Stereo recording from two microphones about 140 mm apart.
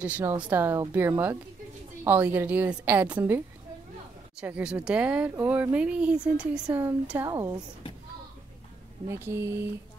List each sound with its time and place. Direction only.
0.0 s speech: 15° right (ahead or behind)
7.2 s speech: 25° right (ahead or behind)
9.0 s speech: 20° right (ahead or behind)